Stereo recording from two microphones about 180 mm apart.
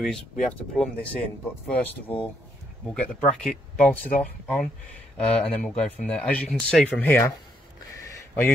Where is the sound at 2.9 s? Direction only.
5° left (ahead or behind).